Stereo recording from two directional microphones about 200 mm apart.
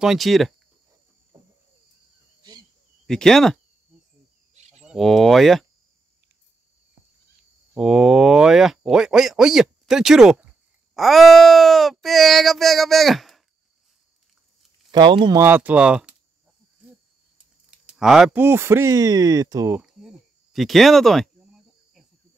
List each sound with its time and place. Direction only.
0.0 s speech: centre (ahead or behind)
3.1 s speech: 5° left (ahead or behind)
4.6 s a sound: 35° right (ahead or behind)
4.8 s speech: centre (ahead or behind)
7.7 s speech: centre (ahead or behind)
14.9 s speech: 20° right (ahead or behind)
15.4 s speech: 10° right (ahead or behind)
17.6 s speech: 5° right (ahead or behind)
19.8 s a sound: centre (ahead or behind)